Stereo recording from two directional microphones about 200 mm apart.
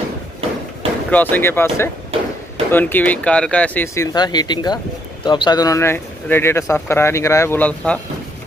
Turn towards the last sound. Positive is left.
turn(degrees=10)  # may be behind; listen again after turning